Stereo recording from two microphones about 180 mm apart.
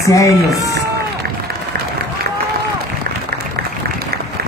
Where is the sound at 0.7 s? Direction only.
60° right (ahead or behind).